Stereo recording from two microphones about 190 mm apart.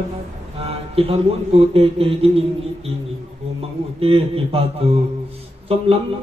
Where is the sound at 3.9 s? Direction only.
30° right (ahead or behind).